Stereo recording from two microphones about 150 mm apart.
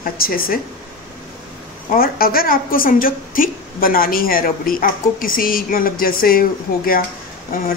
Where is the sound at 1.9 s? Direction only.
75° left (ahead or behind).